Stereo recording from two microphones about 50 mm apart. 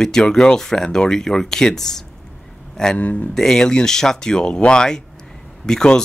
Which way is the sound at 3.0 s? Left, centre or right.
Left.